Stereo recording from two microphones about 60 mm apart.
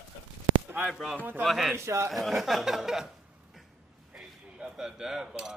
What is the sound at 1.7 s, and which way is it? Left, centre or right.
Speech, right.